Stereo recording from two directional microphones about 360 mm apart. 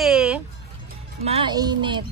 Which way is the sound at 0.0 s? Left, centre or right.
Centre.